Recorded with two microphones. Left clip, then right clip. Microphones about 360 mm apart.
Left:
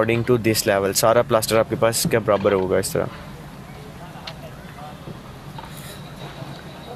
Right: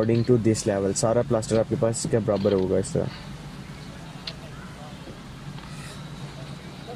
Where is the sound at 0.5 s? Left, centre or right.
Left.